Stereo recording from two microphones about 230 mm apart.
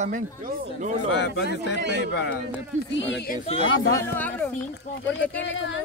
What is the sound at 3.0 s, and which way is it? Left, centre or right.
Speech, left.